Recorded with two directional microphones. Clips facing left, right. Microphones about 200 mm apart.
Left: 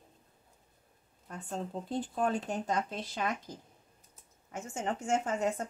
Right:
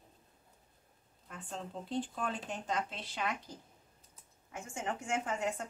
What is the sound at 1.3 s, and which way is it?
Speech, 40° left (ahead or behind).